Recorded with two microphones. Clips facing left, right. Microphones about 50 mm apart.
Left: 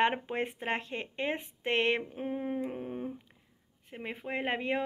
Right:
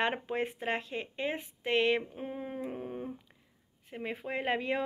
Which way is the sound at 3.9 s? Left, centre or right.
Centre.